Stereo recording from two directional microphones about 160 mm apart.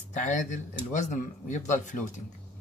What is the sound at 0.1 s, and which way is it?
Speech, 50° left (ahead or behind).